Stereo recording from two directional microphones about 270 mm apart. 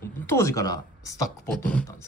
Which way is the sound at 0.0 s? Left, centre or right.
Centre.